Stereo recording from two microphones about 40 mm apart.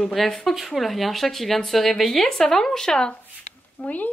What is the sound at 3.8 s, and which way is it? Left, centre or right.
Speech, left.